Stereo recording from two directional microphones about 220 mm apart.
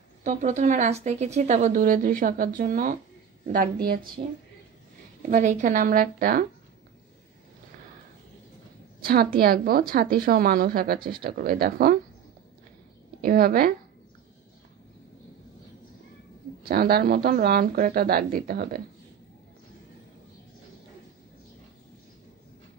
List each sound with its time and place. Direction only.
0.2 s speech: 35° right (ahead or behind)
5.3 s speech: 35° right (ahead or behind)
9.0 s a woman's voice: 45° right (ahead or behind)
11.0 s speech: 20° right (ahead or behind)
11.2 s speech: 40° right (ahead or behind)
13.2 s speech: 40° right (ahead or behind)
16.6 s a woman's voice: 45° right (ahead or behind)